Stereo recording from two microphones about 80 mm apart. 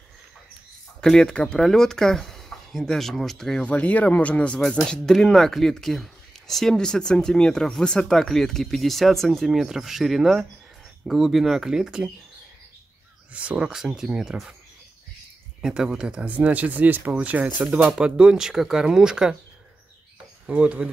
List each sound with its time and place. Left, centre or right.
1.0 s speech: centre
3.6 s speech: centre
13.3 s speech: centre
13.7 s speech: centre
15.6 s speech: centre; by 17.9 s right
17.9 s speech: centre
20.4 s speech: centre